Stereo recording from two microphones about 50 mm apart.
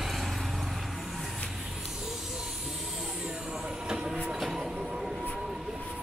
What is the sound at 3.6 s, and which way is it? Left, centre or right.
Train, centre.